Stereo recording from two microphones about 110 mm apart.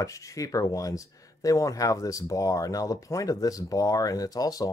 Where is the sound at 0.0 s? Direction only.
30° left (ahead or behind).